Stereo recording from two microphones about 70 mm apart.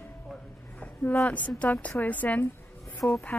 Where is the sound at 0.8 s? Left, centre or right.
Left.